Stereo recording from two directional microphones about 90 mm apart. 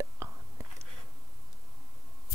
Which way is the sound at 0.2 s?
30° right (ahead or behind).